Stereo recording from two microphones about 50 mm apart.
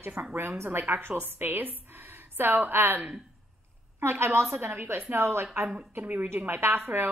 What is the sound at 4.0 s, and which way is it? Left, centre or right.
A woman's voice, right.